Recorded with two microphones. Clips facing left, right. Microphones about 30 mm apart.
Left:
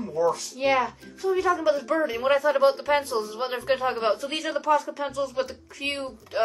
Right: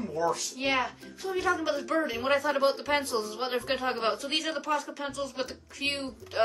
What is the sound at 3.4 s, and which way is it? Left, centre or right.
Speech, centre.